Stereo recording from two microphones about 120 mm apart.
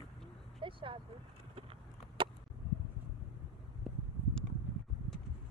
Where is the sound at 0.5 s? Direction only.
45° right (ahead or behind).